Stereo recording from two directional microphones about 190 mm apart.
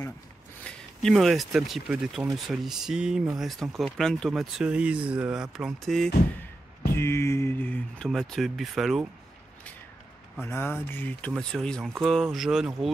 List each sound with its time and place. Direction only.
0.7 s speech: 5° left (ahead or behind)
6.9 s speech: 15° left (ahead or behind)
10.4 s speech: 10° left (ahead or behind)